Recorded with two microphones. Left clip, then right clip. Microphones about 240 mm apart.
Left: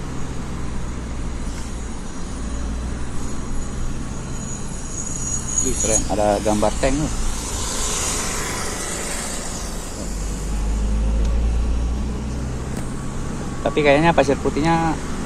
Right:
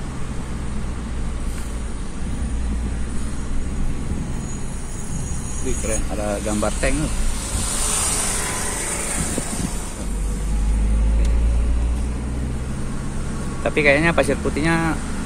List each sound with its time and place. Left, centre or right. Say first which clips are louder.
5.9 s speech: left 7 dB; left
6.4 s speech: left 4 dB; centre
8.4 s vehicle: even; centre
13.7 s speech: left 1 dB; centre